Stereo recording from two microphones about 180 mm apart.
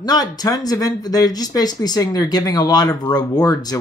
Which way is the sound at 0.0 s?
20° left (ahead or behind).